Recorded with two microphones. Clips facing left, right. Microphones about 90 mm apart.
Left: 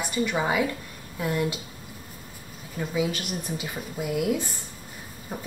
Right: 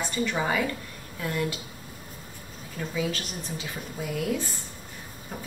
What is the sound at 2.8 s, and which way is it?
Speech, 10° left (ahead or behind).